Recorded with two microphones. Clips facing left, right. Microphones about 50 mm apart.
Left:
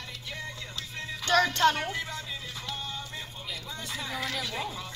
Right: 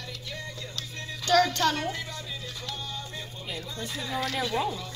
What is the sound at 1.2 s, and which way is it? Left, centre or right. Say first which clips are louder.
Speech: even; left.